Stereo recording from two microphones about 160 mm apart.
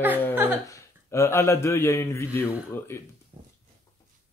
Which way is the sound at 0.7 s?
20° left (ahead or behind).